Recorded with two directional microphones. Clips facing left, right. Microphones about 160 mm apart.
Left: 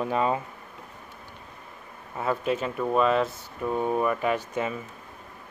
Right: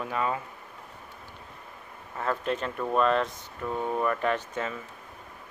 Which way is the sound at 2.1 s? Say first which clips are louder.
Left 3 dB; 10° left (ahead or behind).